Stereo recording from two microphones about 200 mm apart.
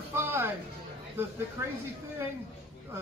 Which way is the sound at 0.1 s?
10° right (ahead or behind).